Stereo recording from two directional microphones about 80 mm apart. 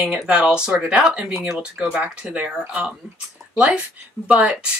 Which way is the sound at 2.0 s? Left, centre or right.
Centre.